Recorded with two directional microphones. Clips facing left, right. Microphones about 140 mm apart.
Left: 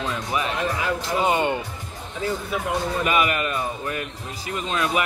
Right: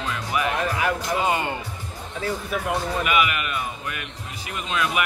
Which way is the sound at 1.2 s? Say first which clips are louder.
Left 4 dB; 25° left (ahead or behind).